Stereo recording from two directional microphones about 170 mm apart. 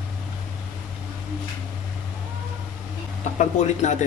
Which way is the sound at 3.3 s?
45° left (ahead or behind).